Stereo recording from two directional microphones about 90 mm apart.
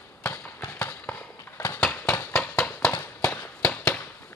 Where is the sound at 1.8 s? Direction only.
15° left (ahead or behind).